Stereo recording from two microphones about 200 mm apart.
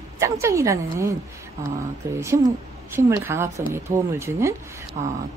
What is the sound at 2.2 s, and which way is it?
Speech, 15° right (ahead or behind).